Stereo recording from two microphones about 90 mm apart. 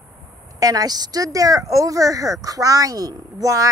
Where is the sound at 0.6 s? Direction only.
45° right (ahead or behind).